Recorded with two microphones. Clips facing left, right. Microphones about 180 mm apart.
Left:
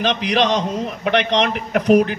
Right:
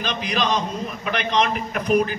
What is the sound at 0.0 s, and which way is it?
A man's voice, 85° left.